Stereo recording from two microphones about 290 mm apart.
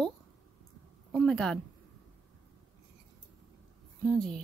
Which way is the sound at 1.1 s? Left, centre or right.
Centre.